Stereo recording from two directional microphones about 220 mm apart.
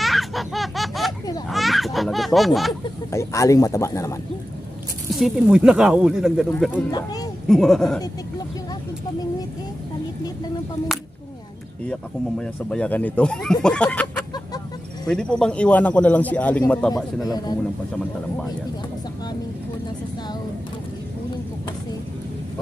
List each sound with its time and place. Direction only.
0.0 s laughter: centre (ahead or behind)
1.5 s children playing: centre (ahead or behind)
3.1 s speech: 15° left (ahead or behind)
5.1 s speech: centre (ahead or behind)
6.9 s speech: 15° left (ahead or behind)
7.4 s speech: centre (ahead or behind)
10.9 s speech: centre (ahead or behind)
16.9 s speech: 15° left (ahead or behind)